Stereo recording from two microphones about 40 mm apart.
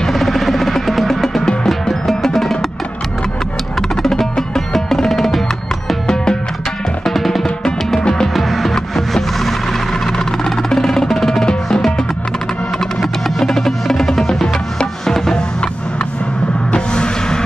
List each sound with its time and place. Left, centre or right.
0.0 s music: centre
3.9 s music: centre
7.1 s music: centre
7.4 s music: centre
8.3 s music: centre
10.1 s music: centre
11.4 s percussion: centre
13.0 s music: centre
16.7 s music: left